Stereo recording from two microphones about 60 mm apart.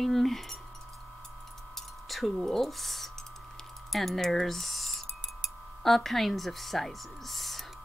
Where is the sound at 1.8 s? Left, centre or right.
Centre.